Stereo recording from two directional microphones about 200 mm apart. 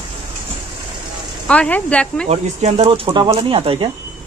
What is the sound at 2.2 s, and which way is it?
Speech, 30° right (ahead or behind).